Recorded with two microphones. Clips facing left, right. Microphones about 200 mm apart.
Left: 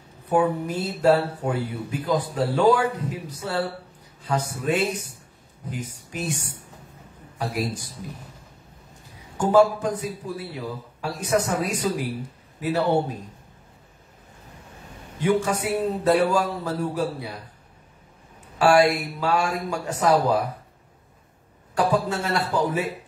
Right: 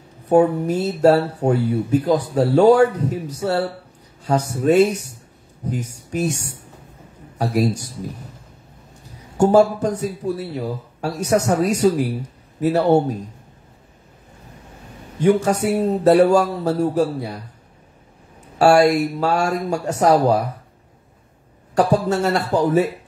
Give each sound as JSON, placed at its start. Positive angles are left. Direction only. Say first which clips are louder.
{"t": 0.3, "sound": "speech", "louder": "right 7 dB", "side_deg": -40}
{"t": 9.4, "sound": "speech", "louder": "right 4 dB", "side_deg": -45}
{"t": 15.1, "sound": "speech", "louder": "right 6 dB", "side_deg": -45}
{"t": 18.6, "sound": "speech", "louder": "right 5 dB", "side_deg": -45}
{"t": 21.7, "sound": "speech", "louder": "right 5 dB", "side_deg": -45}